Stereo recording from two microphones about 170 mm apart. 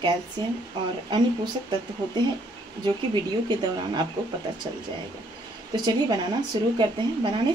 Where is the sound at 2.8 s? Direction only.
25° right (ahead or behind).